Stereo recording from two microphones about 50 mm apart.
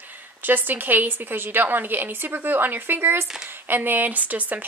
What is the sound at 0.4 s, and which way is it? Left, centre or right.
Speech, right.